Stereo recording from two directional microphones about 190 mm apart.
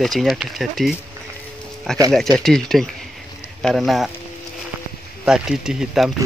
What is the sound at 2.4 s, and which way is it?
Speech, centre (ahead or behind).